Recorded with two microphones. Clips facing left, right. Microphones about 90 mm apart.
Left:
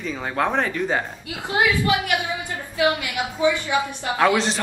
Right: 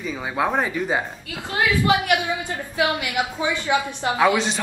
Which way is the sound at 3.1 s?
20° right (ahead or behind).